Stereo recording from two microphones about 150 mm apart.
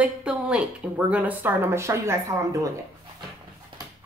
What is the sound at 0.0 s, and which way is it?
A woman's voice, 5° right (ahead or behind).